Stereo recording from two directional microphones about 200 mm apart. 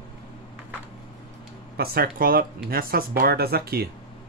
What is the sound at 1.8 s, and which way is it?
Speech, 50° right (ahead or behind).